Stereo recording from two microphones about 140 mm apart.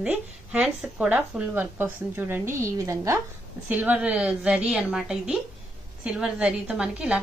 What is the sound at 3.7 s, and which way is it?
A woman's voice, 10° right (ahead or behind).